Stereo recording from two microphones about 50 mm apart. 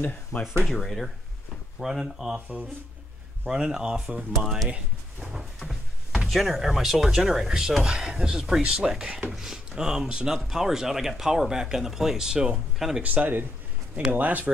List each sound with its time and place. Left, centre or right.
0.3 s speech: left
0.7 s speech: centre
13.0 s speech: right